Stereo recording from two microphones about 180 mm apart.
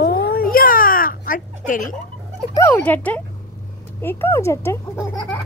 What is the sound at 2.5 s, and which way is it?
A child's voice, 15° left (ahead or behind).